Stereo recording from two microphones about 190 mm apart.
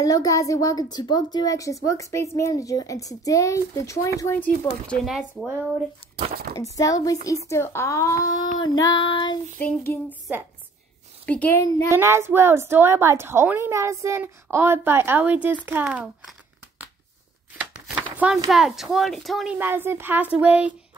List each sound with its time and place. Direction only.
0.0 s a woman's voice: 20° left (ahead or behind)
4.6 s speech: centre (ahead or behind)
6.5 s a woman's voice: 15° left (ahead or behind)
8.7 s child singing: 25° left (ahead or behind)
9.6 s a woman's voice: 10° left (ahead or behind)
11.9 s a woman's voice: 15° right (ahead or behind)
17.6 s chopping: 5° right (ahead or behind)
18.1 s a sound: 5° right (ahead or behind)
18.5 s speech: centre (ahead or behind)
19.6 s a woman's voice: 10° right (ahead or behind)